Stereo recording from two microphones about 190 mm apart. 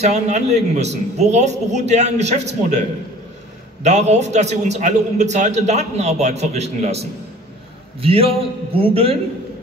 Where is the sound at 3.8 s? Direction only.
35° right (ahead or behind).